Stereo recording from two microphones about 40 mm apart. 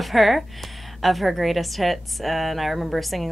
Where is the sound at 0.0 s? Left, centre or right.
Centre.